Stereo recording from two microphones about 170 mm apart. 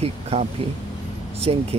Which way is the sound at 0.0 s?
35° right (ahead or behind).